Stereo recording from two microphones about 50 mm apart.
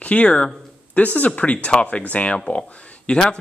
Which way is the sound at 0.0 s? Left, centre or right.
Left.